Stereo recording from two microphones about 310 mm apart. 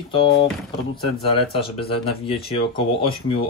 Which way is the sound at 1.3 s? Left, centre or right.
Centre.